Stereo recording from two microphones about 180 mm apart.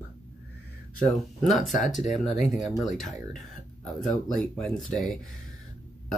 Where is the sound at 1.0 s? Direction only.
Centre (ahead or behind).